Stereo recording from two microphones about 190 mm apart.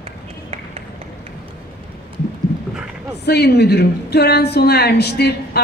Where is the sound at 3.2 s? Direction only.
60° left (ahead or behind).